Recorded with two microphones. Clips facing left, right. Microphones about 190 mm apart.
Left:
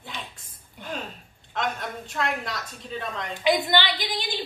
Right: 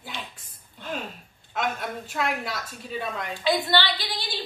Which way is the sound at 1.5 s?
5° right (ahead or behind).